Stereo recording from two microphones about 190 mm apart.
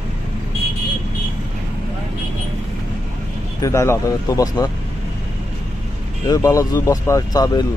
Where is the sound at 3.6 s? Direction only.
15° left (ahead or behind).